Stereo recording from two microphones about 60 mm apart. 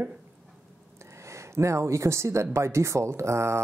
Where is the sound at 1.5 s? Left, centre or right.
Right.